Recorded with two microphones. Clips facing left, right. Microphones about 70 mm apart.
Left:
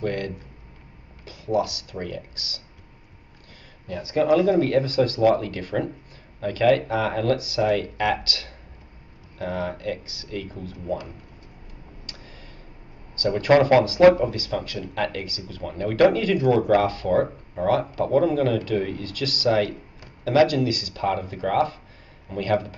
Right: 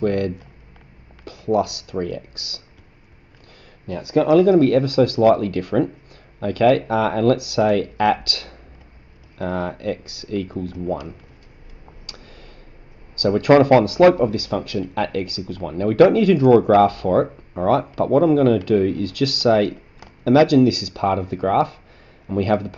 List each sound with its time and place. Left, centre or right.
0.0 s speech: right
3.8 s speech: right
13.2 s speech: right
13.5 s speech: right